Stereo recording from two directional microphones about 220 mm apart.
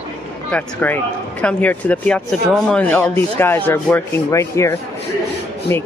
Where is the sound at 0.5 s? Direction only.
5° left (ahead or behind).